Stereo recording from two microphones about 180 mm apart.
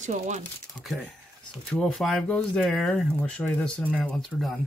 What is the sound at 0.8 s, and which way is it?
Speech, centre (ahead or behind).